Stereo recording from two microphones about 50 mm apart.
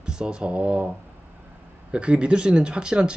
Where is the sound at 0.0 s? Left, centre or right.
Centre.